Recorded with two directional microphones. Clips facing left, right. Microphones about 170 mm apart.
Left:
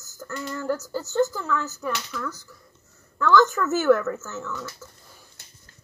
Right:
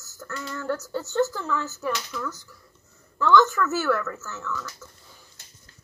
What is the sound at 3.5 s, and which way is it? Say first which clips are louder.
Speech: left 5 dB; 20° left (ahead or behind).